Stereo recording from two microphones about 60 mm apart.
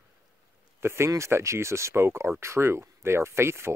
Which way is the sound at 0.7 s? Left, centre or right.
Right.